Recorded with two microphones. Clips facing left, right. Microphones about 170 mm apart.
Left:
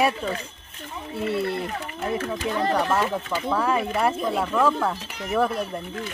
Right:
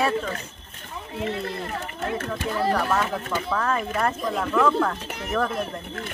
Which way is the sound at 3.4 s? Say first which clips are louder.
Left 5 dB; 10° left (ahead or behind).